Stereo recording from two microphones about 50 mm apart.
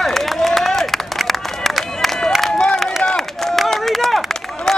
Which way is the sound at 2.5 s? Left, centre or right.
Centre.